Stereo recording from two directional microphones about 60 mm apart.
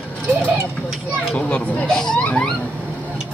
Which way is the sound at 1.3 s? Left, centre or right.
Centre.